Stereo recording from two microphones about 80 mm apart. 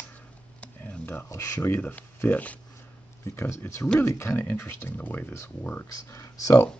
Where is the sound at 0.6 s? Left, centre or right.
Centre.